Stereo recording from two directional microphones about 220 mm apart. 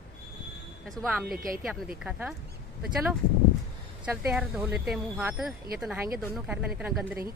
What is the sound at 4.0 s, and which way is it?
A woman's voice, 5° right (ahead or behind).